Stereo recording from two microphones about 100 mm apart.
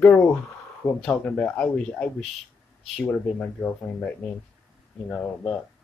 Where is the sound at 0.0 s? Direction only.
15° left (ahead or behind).